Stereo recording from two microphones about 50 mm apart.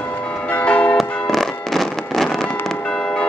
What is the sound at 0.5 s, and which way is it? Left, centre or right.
Change ringing, left.